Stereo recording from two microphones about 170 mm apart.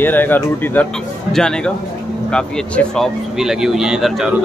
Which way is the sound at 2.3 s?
5° left (ahead or behind).